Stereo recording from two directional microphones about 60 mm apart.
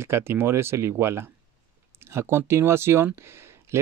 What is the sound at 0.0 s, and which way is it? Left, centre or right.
Speech, right.